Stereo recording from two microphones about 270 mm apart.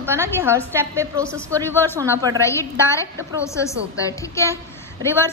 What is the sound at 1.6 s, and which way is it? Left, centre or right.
Speech, centre.